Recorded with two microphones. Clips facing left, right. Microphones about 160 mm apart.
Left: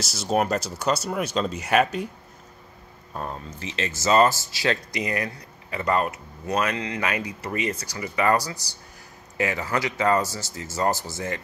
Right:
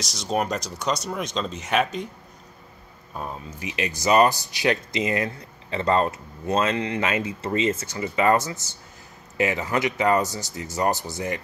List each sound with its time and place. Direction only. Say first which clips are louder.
0.0 s speech: left 2 dB; 5° left (ahead or behind)
3.2 s speech: even; 5° right (ahead or behind)